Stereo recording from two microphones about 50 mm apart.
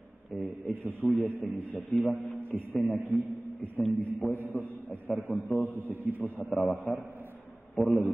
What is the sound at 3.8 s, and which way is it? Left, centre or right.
Speech, left.